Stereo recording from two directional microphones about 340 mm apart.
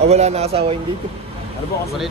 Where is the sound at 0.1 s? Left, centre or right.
Centre.